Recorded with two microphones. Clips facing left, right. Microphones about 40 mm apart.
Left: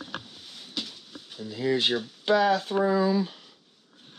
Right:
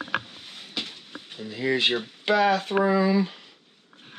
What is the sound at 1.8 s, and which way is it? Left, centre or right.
Speech, right.